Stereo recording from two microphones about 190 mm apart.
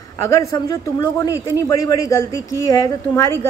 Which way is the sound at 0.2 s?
15° left (ahead or behind).